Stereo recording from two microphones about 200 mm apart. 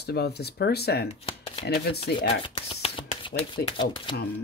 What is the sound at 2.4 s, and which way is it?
Speech, 25° left (ahead or behind).